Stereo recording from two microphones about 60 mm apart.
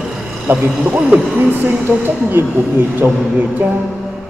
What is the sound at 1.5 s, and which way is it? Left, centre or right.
Speech, right.